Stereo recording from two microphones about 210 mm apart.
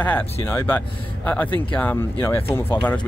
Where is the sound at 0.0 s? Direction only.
10° left (ahead or behind).